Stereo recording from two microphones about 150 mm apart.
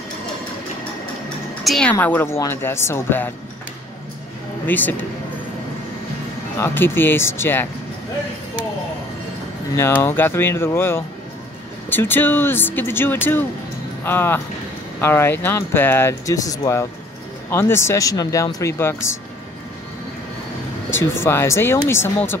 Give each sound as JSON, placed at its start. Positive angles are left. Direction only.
{"t": 1.6, "sound": "speech", "side_deg": 5}
{"t": 4.6, "sound": "speech", "side_deg": 10}
{"t": 6.6, "sound": "speech", "side_deg": 15}
{"t": 9.8, "sound": "speech", "side_deg": 15}
{"t": 20.9, "sound": "speech", "side_deg": 15}